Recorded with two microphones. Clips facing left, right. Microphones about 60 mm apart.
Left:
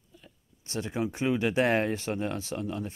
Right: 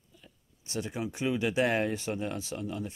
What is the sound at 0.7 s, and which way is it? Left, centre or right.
Speech, left.